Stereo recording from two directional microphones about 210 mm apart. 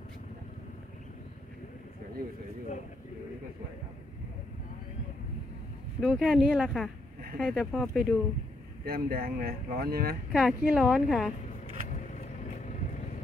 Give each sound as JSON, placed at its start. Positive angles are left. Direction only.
{"t": 5.9, "sound": "a woman's voice", "side_deg": 0}
{"t": 8.8, "sound": "speech", "side_deg": -45}
{"t": 10.3, "sound": "a woman's voice", "side_deg": -5}